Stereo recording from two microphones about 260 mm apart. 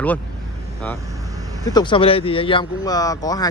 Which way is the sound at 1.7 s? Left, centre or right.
Centre.